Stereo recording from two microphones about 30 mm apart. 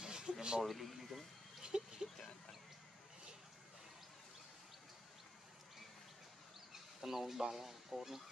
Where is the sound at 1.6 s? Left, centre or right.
Right.